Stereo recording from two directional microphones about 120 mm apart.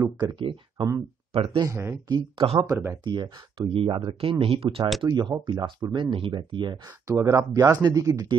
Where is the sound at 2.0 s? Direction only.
40° right (ahead or behind).